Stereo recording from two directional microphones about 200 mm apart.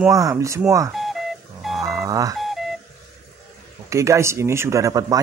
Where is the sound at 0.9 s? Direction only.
Centre (ahead or behind).